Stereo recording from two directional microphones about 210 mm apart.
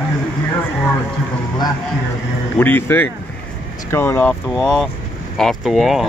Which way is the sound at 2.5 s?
10° left (ahead or behind).